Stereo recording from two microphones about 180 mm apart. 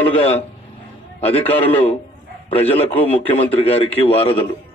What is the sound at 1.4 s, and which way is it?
A man's voice, 35° left (ahead or behind).